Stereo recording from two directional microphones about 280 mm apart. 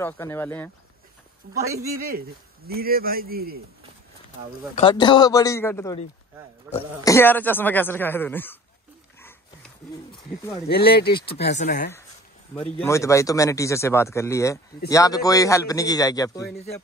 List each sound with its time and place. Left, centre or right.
0.0 s speech: centre
1.6 s speech: centre
2.7 s speech: right
4.7 s speech: centre
6.7 s speech: centre
7.1 s speech: centre
10.7 s speech: left
12.5 s speech: centre